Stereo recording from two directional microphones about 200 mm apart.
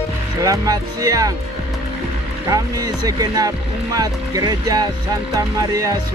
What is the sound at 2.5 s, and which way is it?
Speech, 20° right (ahead or behind).